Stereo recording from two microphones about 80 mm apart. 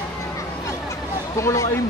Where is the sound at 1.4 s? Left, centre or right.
Left.